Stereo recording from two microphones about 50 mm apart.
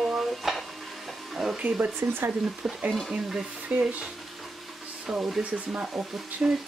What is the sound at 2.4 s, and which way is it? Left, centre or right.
Speech, centre.